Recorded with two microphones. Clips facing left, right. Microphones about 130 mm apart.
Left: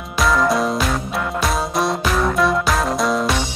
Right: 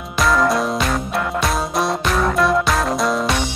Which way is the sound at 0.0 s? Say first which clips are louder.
Right 1 dB; centre (ahead or behind).